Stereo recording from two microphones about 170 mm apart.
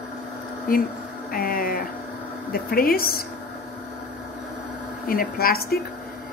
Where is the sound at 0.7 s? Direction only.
60° left (ahead or behind).